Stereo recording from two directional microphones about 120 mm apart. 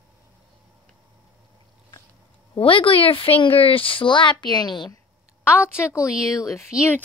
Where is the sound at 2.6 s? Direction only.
50° left (ahead or behind).